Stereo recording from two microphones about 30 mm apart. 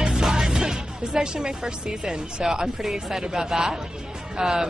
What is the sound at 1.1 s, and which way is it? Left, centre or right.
Speech, right.